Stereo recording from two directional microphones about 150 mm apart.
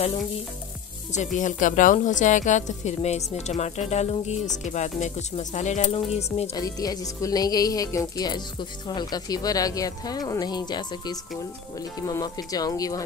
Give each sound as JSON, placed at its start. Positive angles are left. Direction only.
{"t": 1.1, "sound": "a woman's voice", "side_deg": 55}
{"t": 6.5, "sound": "speech", "side_deg": 25}